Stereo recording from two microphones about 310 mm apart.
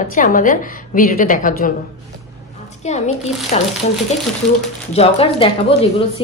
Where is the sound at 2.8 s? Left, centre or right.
Left.